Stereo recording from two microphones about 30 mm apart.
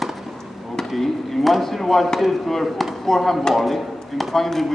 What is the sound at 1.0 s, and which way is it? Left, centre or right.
Speech, centre.